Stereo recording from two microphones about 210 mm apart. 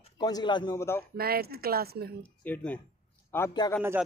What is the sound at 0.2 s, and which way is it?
Speech, 20° left (ahead or behind).